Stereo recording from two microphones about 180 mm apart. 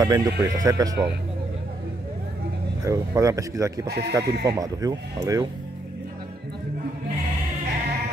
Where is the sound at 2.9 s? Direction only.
20° right (ahead or behind).